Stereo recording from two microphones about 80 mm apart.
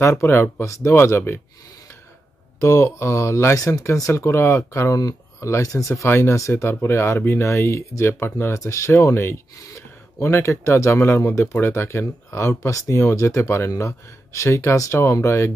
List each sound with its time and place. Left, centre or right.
0.0 s speech: left
2.6 s speech: left